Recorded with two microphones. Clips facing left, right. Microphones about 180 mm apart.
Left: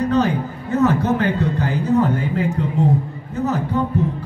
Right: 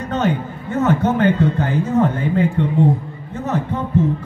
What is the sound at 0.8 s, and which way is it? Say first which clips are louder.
Speech: right 3 dB; 35° left (ahead or behind).